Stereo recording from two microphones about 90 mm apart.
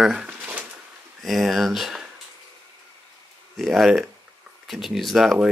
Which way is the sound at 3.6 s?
Centre (ahead or behind).